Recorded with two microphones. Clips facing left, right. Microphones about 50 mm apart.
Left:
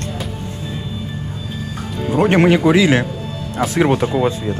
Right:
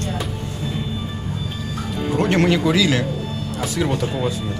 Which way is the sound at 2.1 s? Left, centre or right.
Left.